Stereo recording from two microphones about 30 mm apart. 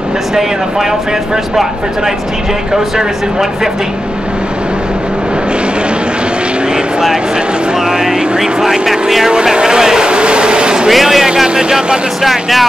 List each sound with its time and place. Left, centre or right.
2.7 s speech: centre
8.0 s speech: centre
9.3 s speech: right
10.0 s a sound: right
10.9 s speech: centre
11.4 s speech: right
12.2 s speech: centre